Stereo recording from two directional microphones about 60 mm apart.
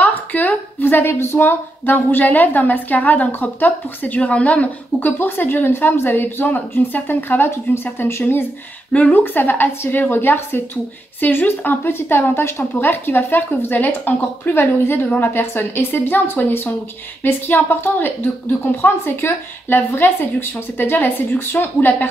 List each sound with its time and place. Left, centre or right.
0.0 s a woman's voice: left
8.9 s speech: left
9.2 s a woman's voice: left